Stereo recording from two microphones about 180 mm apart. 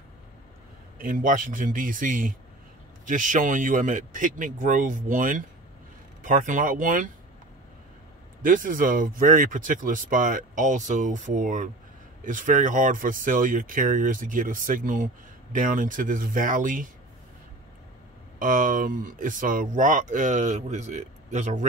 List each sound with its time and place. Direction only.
0.9 s speech: 50° right (ahead or behind)
8.4 s speech: 50° right (ahead or behind)
18.4 s speech: 50° right (ahead or behind)